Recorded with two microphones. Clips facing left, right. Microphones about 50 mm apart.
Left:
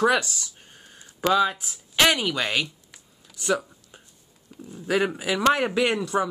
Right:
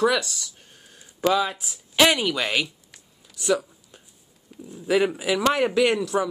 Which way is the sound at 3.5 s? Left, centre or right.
Centre.